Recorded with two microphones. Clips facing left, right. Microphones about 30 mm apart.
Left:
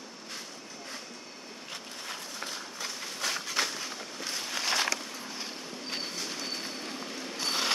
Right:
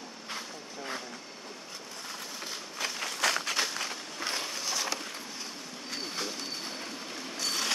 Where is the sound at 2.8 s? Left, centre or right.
Right.